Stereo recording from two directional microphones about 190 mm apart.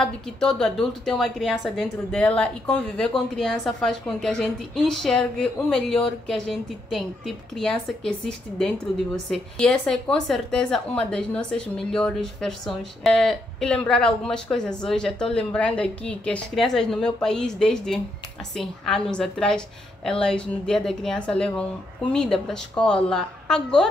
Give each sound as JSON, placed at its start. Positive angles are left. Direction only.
{"t": 0.0, "sound": "a woman's voice", "side_deg": 5}